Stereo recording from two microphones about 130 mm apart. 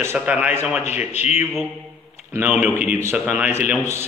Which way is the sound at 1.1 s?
60° left (ahead or behind).